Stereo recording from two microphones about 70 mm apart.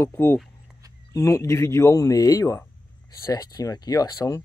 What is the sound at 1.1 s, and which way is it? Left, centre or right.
Speech, left.